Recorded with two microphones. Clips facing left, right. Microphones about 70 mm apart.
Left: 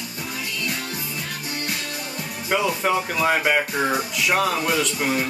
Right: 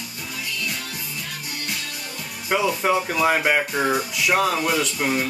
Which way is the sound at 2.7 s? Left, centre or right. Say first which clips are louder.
Right 1 dB; centre.